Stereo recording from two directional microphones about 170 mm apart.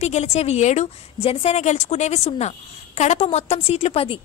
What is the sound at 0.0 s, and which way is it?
A woman's voice, 40° left (ahead or behind).